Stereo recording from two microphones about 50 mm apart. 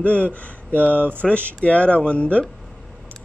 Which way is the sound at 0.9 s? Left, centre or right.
Right.